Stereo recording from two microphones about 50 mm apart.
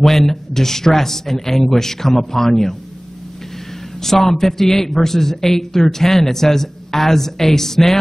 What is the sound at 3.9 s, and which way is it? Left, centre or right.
A man's voice, centre.